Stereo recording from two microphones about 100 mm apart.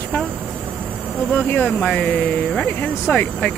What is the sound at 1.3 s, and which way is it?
Speech, 15° left (ahead or behind).